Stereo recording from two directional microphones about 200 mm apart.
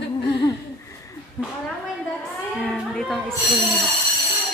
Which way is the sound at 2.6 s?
5° left (ahead or behind).